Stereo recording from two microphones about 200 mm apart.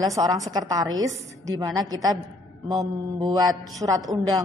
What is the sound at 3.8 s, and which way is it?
Speech, 15° right (ahead or behind).